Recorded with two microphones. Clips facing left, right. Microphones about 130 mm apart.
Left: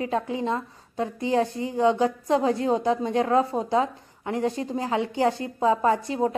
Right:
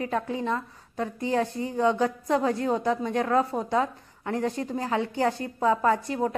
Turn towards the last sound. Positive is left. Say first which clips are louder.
# left 2 dB
turn(degrees=25)  # may be behind; listen again after turning